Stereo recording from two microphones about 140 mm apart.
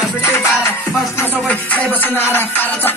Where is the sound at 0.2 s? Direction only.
20° left (ahead or behind).